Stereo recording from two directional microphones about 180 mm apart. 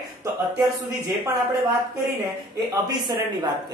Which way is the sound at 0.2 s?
15° right (ahead or behind).